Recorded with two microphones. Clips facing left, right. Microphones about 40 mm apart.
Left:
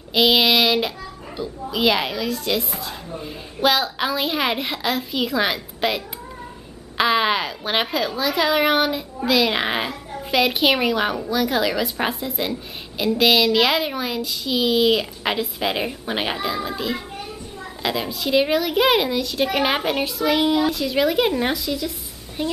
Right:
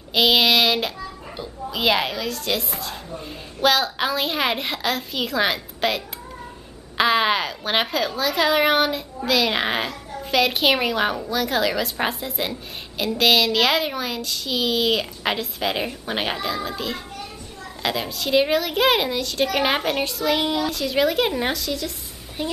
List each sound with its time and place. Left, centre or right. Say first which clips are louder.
0.1 s a child's voice: left 1 dB; centre